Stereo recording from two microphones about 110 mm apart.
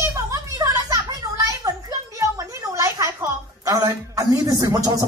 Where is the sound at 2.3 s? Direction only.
30° right (ahead or behind).